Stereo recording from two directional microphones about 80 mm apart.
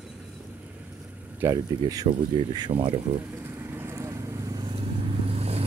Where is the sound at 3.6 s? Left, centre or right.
Right.